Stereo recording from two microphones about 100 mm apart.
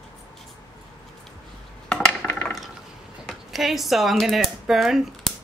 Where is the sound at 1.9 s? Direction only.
10° left (ahead or behind).